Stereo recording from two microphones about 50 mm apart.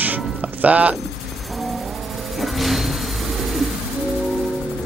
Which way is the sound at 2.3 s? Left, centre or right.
Centre.